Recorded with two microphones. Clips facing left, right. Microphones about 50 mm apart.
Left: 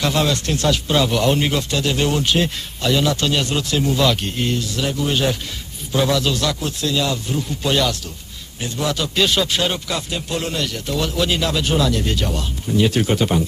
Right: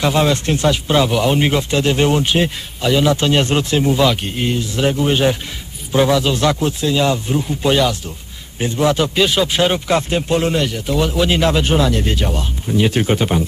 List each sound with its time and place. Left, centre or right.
0.0 s speech: centre
8.5 s speech: right
9.2 s speech: centre